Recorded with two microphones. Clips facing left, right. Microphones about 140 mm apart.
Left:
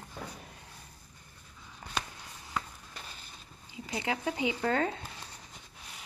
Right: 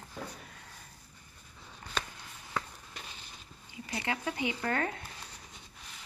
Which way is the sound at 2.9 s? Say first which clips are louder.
Even; 40° left (ahead or behind).